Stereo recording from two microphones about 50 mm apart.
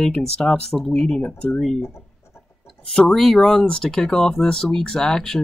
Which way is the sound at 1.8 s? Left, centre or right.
Left.